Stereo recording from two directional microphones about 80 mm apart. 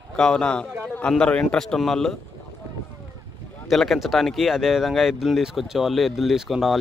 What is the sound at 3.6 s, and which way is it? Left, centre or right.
Speech, centre.